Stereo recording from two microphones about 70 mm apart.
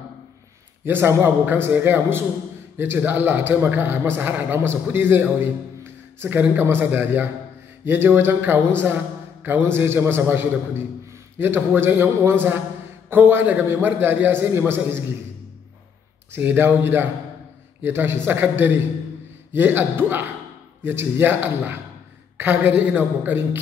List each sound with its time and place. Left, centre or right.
0.8 s a man's voice: right
16.3 s a man's voice: right